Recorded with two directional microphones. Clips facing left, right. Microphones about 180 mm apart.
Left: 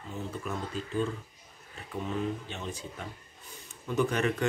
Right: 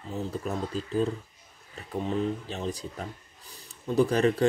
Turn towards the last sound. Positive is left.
turn(degrees=-35)  # may be behind; listen again after turning